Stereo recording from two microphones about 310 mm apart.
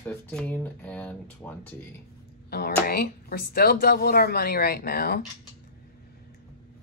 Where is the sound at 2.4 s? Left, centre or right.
Left.